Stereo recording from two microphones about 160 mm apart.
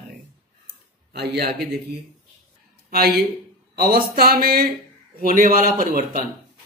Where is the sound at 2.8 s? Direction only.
70° right (ahead or behind).